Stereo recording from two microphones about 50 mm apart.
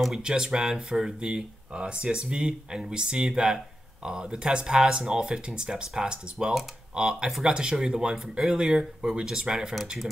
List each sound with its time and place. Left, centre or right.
0.2 s speech: centre